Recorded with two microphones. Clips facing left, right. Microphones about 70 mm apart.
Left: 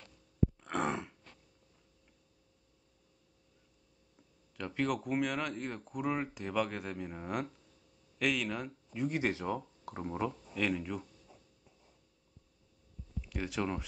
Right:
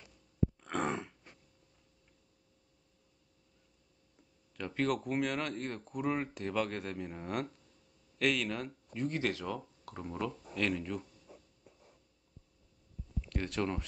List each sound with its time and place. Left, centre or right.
0.6 s throat clearing: centre
4.6 s speech: centre
9.2 s speech: left
10.3 s speech: centre
13.3 s speech: centre